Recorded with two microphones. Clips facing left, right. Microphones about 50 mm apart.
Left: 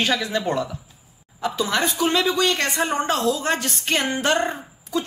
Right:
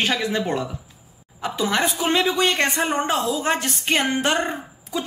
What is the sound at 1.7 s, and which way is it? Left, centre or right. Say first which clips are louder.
A woman's voice: right 1 dB; centre.